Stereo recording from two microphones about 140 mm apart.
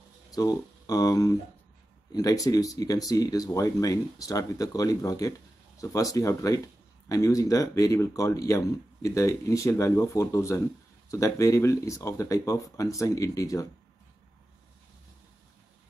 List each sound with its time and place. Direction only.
0.3 s speech: 25° left (ahead or behind)